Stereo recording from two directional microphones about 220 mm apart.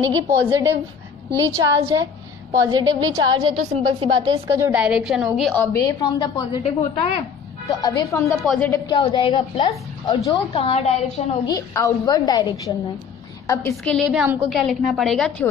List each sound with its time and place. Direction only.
0.0 s a woman's voice: 15° right (ahead or behind); by 6.6 s 20° left (ahead or behind)
6.6 s a woman's voice: 30° left (ahead or behind)
7.8 s a woman's voice: 15° left (ahead or behind)
8.8 s a woman's voice: 20° left (ahead or behind)
11.4 s a woman's voice: 15° left (ahead or behind)
14.1 s a woman's voice: 5° right (ahead or behind)